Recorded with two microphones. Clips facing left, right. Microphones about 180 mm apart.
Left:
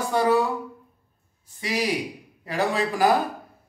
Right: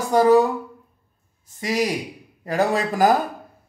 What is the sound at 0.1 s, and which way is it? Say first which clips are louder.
Speech: right 6 dB; 40° right (ahead or behind).